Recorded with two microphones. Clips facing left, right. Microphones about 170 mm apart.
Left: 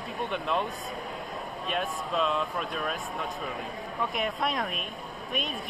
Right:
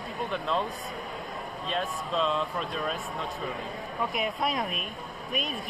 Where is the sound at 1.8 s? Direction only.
5° left (ahead or behind).